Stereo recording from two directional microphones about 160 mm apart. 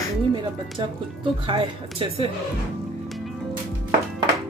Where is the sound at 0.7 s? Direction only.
30° right (ahead or behind).